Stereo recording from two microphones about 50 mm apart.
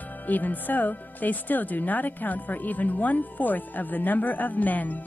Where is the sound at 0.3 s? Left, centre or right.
Left.